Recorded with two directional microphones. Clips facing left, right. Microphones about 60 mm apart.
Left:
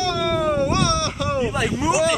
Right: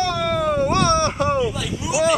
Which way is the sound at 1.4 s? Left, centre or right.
Left.